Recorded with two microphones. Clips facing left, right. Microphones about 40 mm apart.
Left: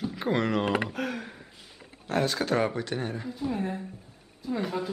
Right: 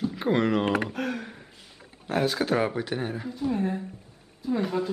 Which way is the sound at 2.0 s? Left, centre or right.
Centre.